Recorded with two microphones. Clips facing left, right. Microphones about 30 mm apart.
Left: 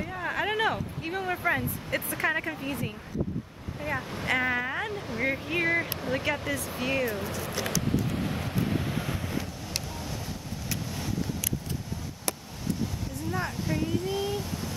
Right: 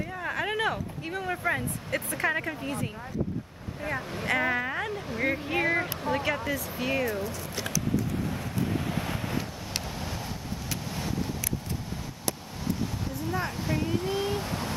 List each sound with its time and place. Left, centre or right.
0.0 s speech: centre
4.3 s speech: centre
7.2 s speech: left
7.4 s a sound: left
8.3 s vehicle: left
9.0 s waves: right
13.3 s a sound: centre